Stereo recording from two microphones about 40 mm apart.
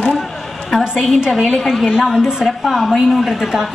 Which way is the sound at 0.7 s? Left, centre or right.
Centre.